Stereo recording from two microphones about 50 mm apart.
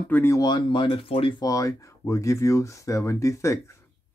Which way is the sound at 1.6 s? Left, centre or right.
Left.